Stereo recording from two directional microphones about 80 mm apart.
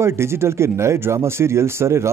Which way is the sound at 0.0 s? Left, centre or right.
Right.